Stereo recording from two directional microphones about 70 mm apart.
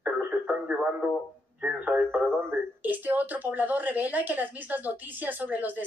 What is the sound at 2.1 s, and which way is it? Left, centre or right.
Speech, right.